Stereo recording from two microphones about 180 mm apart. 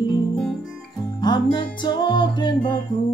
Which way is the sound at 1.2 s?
25° left (ahead or behind).